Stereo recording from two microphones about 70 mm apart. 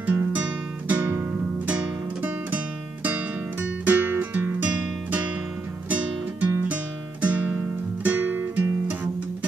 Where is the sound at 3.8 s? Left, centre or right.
Right.